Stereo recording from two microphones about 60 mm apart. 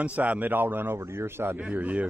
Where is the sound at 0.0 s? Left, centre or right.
Right.